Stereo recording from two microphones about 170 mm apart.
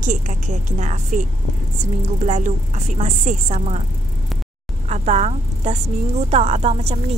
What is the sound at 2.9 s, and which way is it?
Speech, 45° right (ahead or behind).